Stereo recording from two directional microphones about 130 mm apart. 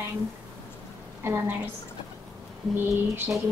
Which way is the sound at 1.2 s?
20° right (ahead or behind).